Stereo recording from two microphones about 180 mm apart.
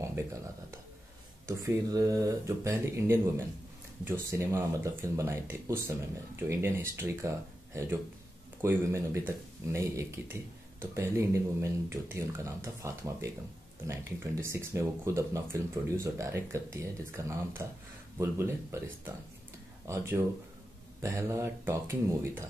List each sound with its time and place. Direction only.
0.0 s speech: 15° right (ahead or behind)